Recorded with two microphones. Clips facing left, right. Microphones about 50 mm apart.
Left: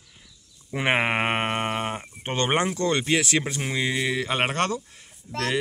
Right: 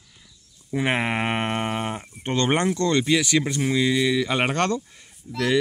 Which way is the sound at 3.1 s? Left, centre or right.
Left.